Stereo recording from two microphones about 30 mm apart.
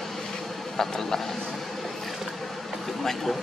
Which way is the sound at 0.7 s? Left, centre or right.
Centre.